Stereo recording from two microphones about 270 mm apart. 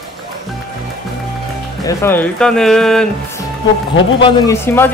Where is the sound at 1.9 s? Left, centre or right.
Centre.